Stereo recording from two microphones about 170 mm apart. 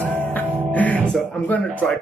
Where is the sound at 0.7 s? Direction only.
10° left (ahead or behind).